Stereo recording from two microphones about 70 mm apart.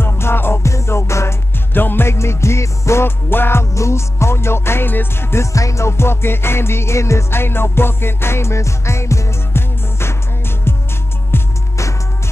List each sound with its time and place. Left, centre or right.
0.0 s music: left
3.7 s music: left
5.4 s music: left
11.3 s music: left